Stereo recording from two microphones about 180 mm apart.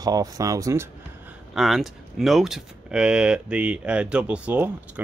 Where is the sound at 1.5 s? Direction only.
Centre (ahead or behind).